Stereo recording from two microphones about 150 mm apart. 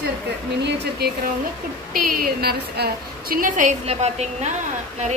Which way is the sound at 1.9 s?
80° right.